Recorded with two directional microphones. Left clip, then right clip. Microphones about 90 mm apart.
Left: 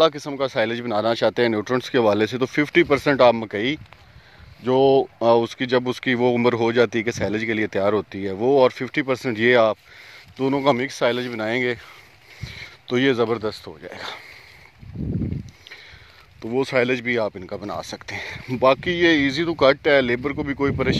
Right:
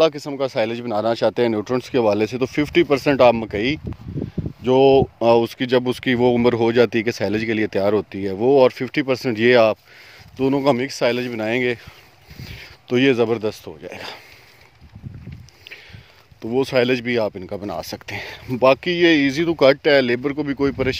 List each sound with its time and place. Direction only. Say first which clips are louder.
0.0 s speech: right 1 dB; 15° right (ahead or behind)
0.7 s speech: right 1 dB; centre (ahead or behind)
3.1 s speech: right 2 dB; 25° right (ahead or behind)
4.6 s speech: right 3 dB; 35° right (ahead or behind)
10.6 s speech: even; 25° right (ahead or behind)
16.4 s speech: right 2 dB; 30° right (ahead or behind)
16.9 s speech: right 2 dB; 45° right (ahead or behind)
20.2 s speech: right 2 dB; 40° right (ahead or behind)